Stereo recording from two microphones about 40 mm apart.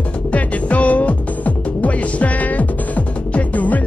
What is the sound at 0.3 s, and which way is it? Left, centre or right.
Music, left.